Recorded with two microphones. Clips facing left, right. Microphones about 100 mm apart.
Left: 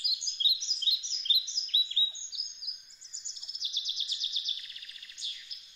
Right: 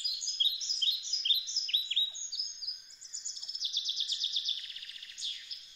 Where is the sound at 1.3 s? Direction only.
15° left (ahead or behind).